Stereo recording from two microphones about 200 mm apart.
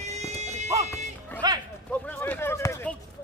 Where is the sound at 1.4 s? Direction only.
20° right (ahead or behind).